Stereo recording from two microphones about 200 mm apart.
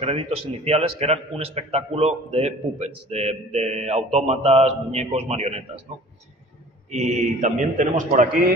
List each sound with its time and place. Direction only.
0.0 s speech: 30° right (ahead or behind)
6.9 s speech: 35° right (ahead or behind)